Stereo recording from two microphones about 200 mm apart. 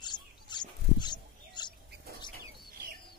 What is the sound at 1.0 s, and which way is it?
Bird, 20° left (ahead or behind).